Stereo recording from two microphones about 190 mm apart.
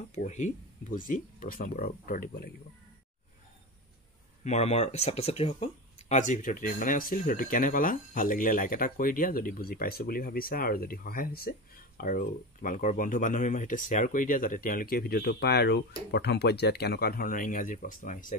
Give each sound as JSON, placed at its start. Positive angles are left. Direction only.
{"t": 0.1, "sound": "speech", "side_deg": 40}
{"t": 4.5, "sound": "speech", "side_deg": 35}